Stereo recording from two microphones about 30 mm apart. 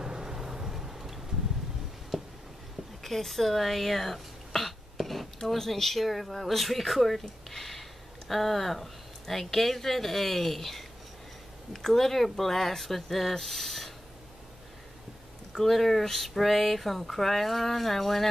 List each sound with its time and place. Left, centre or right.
0.0 s vehicle: right; by 1.2 s centre
2.1 s a sound: centre
3.0 s throat clearing: centre
5.4 s speech: centre
15.5 s speech: centre